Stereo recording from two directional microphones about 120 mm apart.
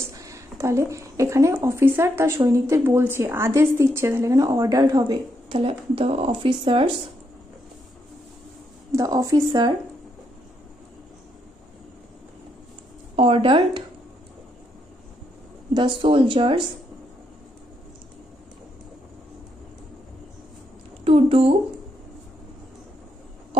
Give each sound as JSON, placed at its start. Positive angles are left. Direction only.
{"t": 0.0, "sound": "speech", "side_deg": -25}
{"t": 5.5, "sound": "speech", "side_deg": -50}
{"t": 8.9, "sound": "a woman's voice", "side_deg": -30}
{"t": 13.1, "sound": "speech", "side_deg": -50}
{"t": 15.7, "sound": "speech", "side_deg": -45}
{"t": 21.0, "sound": "speech", "side_deg": -55}